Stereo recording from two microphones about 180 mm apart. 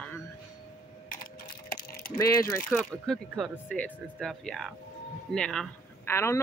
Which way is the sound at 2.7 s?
5° left (ahead or behind).